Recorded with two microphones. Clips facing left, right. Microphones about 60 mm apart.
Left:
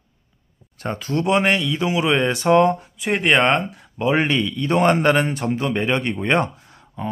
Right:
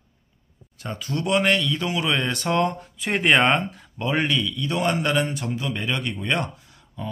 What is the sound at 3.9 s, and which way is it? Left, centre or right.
Speech, left.